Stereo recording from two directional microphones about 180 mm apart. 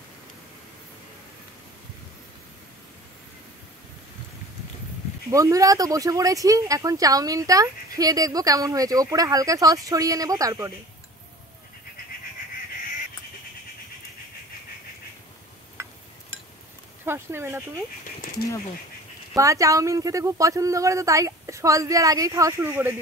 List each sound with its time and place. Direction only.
5.3 s speech: 20° right (ahead or behind)
17.0 s speech: 15° right (ahead or behind)
18.0 s a sound: 50° left (ahead or behind)
19.3 s speech: 15° right (ahead or behind)